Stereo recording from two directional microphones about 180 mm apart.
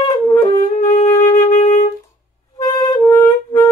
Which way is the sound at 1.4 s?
40° left (ahead or behind).